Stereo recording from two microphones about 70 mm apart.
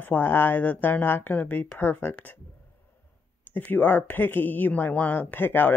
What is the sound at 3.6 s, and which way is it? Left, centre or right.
Speech, left.